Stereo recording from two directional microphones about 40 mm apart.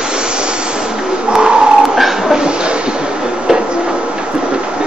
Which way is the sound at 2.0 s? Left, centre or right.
Centre.